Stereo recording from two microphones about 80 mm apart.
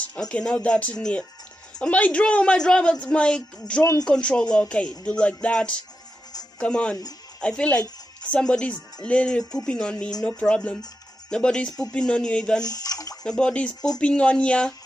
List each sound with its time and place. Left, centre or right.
0.1 s speech: centre
12.6 s speech: left
13.2 s speech: centre